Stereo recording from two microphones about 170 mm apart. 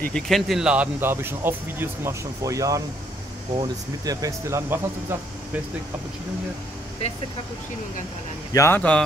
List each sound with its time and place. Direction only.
0.0 s speech: 5° left (ahead or behind); by 4.7 s 15° right (ahead or behind)
8.5 s speech: 15° left (ahead or behind)